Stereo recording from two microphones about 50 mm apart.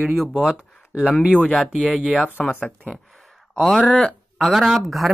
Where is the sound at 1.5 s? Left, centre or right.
Centre.